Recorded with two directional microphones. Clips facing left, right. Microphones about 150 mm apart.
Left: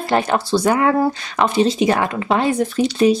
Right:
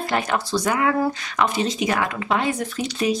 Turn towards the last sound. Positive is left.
turn(degrees=30)  # may be behind; listen again after turning